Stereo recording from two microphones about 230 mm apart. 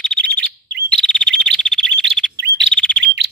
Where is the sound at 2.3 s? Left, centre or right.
Right.